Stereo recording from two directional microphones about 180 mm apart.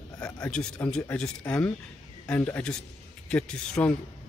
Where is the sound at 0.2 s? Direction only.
5° left (ahead or behind).